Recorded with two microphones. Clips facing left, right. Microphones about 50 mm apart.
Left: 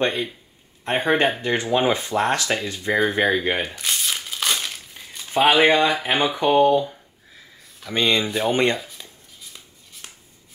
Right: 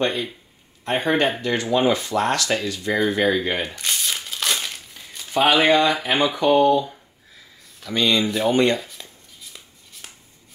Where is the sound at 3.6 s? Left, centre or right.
Centre.